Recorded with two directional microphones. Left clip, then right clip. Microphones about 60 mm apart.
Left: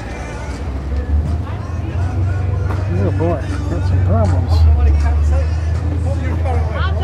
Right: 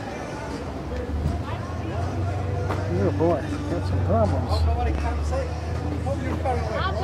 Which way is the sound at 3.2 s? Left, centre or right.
Left.